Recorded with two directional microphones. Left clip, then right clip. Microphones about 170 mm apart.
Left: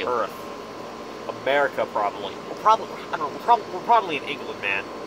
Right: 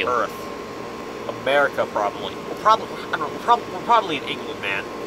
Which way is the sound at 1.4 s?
35° left (ahead or behind).